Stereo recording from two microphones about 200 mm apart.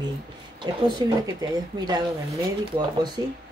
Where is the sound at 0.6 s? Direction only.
20° right (ahead or behind).